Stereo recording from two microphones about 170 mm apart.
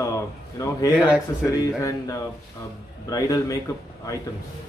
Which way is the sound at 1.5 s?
20° left (ahead or behind).